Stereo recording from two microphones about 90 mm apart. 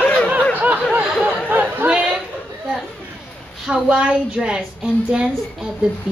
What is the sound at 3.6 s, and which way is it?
A woman's voice, 10° right (ahead or behind).